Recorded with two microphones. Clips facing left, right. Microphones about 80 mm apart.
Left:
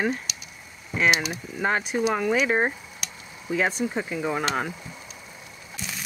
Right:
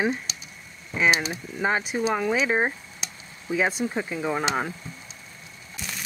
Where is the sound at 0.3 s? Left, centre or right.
Right.